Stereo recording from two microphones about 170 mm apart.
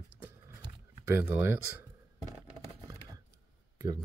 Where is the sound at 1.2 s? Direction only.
10° right (ahead or behind).